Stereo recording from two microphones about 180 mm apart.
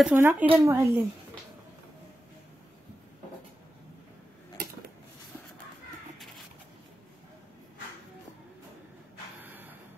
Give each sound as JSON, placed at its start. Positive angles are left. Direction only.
{"t": 0.0, "sound": "speech", "side_deg": -10}
{"t": 6.1, "sound": "cat", "side_deg": 0}
{"t": 9.4, "sound": "a sound", "side_deg": -10}